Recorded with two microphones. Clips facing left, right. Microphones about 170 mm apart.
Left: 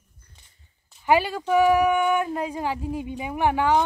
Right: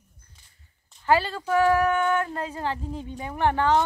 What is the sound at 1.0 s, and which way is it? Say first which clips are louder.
Speech: left 2 dB; 15° left (ahead or behind).